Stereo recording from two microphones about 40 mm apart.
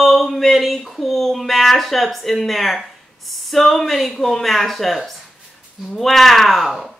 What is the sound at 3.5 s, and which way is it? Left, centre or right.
Speech, centre.